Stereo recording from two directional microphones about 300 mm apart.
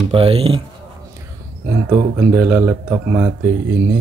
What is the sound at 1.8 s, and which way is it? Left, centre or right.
Speech, centre.